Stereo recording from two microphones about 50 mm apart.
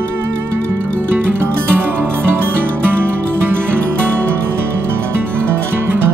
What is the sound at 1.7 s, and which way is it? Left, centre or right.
Music, right.